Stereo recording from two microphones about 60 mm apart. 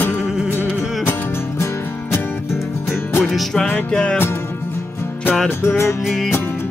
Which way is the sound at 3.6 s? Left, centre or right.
Centre.